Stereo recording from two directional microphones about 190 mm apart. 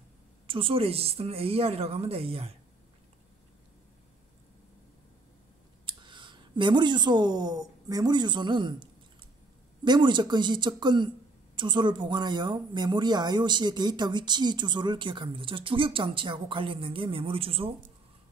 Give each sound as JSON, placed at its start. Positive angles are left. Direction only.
{"t": 0.5, "sound": "a woman's voice", "side_deg": -30}
{"t": 5.9, "sound": "speech", "side_deg": -25}
{"t": 9.8, "sound": "speech", "side_deg": -25}